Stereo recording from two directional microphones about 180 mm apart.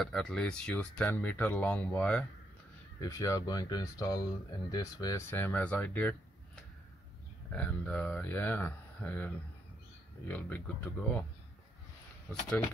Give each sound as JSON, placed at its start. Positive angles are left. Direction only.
{"t": 0.0, "sound": "speech", "side_deg": 5}
{"t": 3.0, "sound": "speech", "side_deg": 20}